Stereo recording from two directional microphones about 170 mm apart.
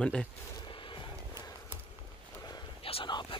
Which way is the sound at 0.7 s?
30° left (ahead or behind).